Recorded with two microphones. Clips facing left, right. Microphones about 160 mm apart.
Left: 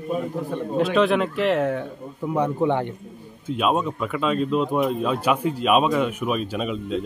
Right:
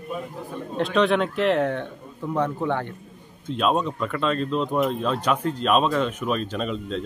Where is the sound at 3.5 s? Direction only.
5° left (ahead or behind).